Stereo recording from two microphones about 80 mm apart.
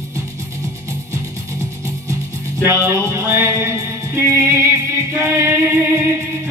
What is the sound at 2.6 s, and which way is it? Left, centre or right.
Music, right.